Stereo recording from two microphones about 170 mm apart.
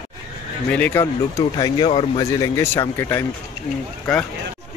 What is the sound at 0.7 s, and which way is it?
Speech, 10° left (ahead or behind).